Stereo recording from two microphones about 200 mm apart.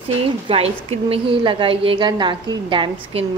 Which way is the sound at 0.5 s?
30° right (ahead or behind).